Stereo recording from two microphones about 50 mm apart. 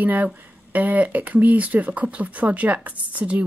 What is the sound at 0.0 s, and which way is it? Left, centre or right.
Speech, right.